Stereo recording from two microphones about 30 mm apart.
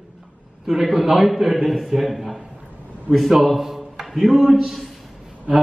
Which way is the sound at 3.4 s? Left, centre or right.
Centre.